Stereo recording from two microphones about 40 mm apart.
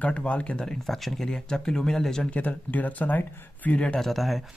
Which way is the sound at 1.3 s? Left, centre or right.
Centre.